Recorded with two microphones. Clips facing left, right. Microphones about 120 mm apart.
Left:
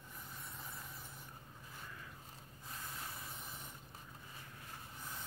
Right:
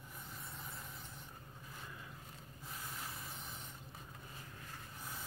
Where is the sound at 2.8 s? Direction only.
Centre (ahead or behind).